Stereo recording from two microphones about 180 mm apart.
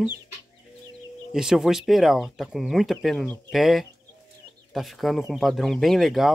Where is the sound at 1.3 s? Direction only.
Centre (ahead or behind).